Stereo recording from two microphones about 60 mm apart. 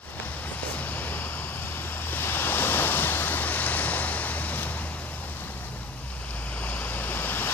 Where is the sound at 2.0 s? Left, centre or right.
Left.